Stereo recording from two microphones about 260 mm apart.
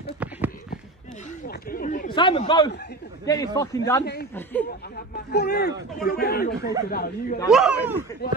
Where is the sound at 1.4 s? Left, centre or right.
Left.